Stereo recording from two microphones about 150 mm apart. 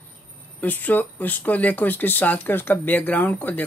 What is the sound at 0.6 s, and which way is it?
Speech, 10° left (ahead or behind).